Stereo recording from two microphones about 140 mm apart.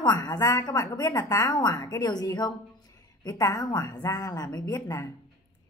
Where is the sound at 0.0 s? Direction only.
30° left (ahead or behind).